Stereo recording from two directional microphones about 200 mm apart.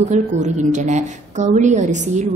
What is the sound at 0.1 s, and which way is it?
A woman's voice, 35° right (ahead or behind).